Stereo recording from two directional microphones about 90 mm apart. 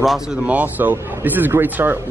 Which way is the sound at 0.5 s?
20° right (ahead or behind).